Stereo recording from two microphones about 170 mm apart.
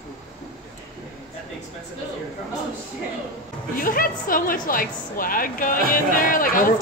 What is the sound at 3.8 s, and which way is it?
A woman's voice, 55° left (ahead or behind).